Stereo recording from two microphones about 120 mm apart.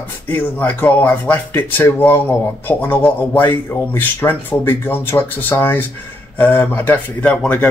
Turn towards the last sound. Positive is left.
turn(degrees=10)  # may be behind; listen again after turning